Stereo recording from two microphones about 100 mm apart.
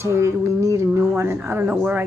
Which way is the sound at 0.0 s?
30° right (ahead or behind).